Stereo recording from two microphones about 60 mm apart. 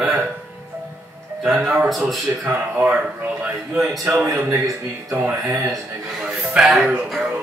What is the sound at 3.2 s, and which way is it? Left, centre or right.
Speech, centre.